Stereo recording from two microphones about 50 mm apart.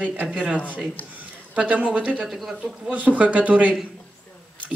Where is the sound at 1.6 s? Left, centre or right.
Right.